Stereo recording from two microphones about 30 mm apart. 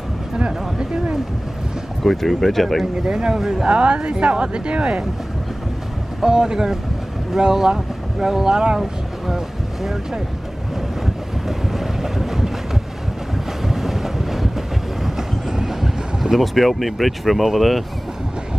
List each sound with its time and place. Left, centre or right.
0.4 s speech: right
2.0 s speech: centre
3.1 s speech: right
3.3 s speech: centre
3.6 s speech: right
6.2 s speech: right
11.4 s boat: centre
13.7 s boat: centre
15.0 s vehicle: centre
17.6 s speech: centre